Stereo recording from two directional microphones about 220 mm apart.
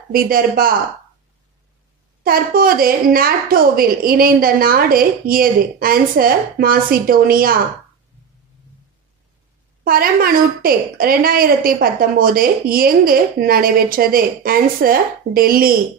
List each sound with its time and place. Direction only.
0.1 s a woman's voice: 40° right (ahead or behind)
2.2 s a woman's voice: 40° right (ahead or behind)
9.8 s a woman's voice: 40° right (ahead or behind)